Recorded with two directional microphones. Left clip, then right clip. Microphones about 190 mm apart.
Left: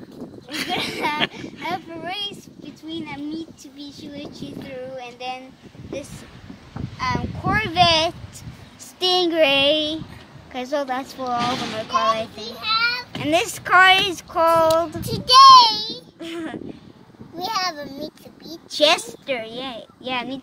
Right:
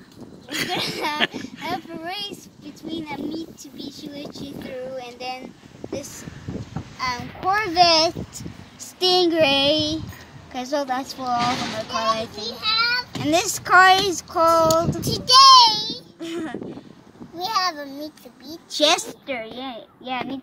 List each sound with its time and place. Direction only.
0.5 s a sound: centre (ahead or behind)
2.9 s speech: 5° left (ahead or behind)
7.0 s speech: 5° left (ahead or behind)
9.0 s speech: 20° left (ahead or behind)
15.0 s a child's voice: centre (ahead or behind)
16.2 s a sound: 20° left (ahead or behind)
17.4 s a child's voice: 5° left (ahead or behind)
18.8 s speech: 20° left (ahead or behind)